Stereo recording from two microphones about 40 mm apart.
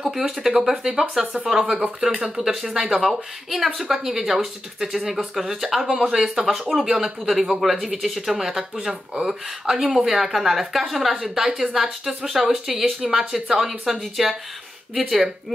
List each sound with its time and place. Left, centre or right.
0.4 s speech: centre
7.9 s speech: centre